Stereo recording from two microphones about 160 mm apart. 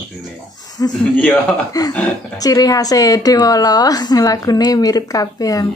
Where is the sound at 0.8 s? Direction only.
20° left (ahead or behind).